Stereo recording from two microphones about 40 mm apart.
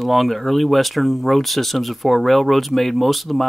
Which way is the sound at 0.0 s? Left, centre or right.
Centre.